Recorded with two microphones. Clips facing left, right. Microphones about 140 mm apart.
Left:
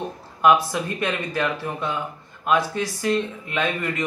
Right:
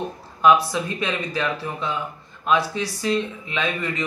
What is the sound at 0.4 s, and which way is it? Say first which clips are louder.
A man's voice: right 1 dB; 50° left (ahead or behind).